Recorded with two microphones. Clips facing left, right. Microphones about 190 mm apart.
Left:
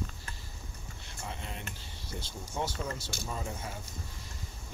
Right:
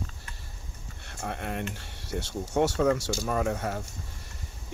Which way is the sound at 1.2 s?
60° right (ahead or behind).